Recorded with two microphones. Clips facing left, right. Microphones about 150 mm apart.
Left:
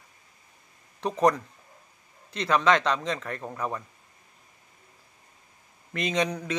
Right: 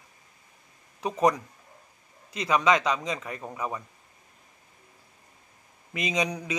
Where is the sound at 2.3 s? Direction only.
10° right (ahead or behind).